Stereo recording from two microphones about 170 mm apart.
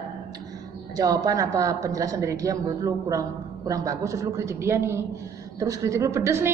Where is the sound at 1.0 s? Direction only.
20° right (ahead or behind).